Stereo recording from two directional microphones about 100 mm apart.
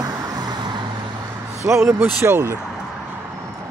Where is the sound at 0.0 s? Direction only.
40° right (ahead or behind).